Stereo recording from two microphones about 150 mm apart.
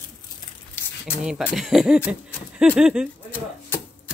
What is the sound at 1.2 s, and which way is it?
Speech, 5° right (ahead or behind).